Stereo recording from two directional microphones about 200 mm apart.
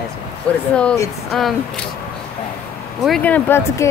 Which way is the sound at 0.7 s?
5° left (ahead or behind).